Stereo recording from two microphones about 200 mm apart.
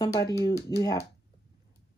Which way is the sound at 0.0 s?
15° left (ahead or behind).